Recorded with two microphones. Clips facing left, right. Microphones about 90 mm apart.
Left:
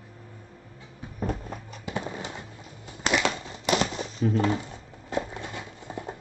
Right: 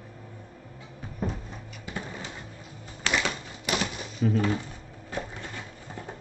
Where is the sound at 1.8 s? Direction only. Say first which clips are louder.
Left 4 dB; 20° left (ahead or behind).